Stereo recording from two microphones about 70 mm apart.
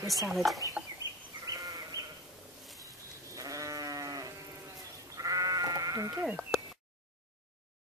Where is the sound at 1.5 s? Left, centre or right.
Right.